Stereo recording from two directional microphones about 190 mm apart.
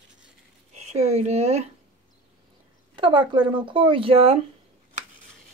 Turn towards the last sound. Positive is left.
turn(degrees=-30)  # may be behind; listen again after turning